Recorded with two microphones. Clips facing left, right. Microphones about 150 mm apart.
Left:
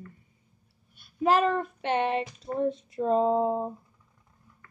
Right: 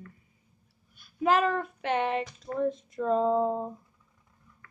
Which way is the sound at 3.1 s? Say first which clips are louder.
Left 1 dB; 15° left (ahead or behind).